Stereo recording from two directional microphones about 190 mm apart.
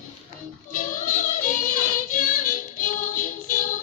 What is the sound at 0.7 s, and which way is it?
Child singing, 45° left (ahead or behind).